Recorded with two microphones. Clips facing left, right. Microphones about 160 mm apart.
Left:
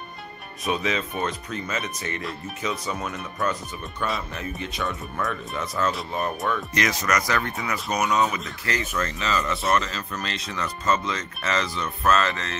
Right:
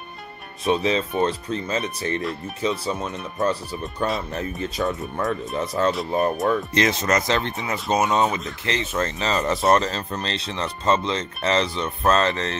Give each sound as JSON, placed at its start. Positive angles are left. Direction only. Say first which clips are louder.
{"t": 0.7, "sound": "speech", "louder": "right 5 dB", "side_deg": -30}